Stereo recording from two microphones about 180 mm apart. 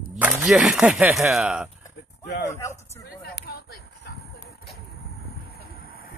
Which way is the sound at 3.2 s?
60° left (ahead or behind).